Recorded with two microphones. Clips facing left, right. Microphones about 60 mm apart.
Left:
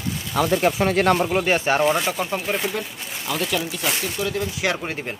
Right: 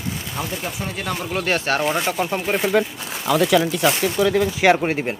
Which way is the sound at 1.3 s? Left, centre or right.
Centre.